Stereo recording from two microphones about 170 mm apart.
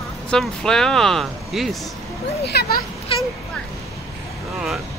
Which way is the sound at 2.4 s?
70° left (ahead or behind).